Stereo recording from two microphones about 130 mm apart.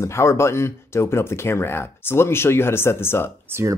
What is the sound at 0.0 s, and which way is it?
Speech, 20° left (ahead or behind).